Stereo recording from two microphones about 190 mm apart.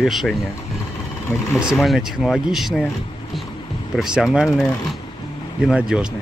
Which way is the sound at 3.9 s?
Centre (ahead or behind).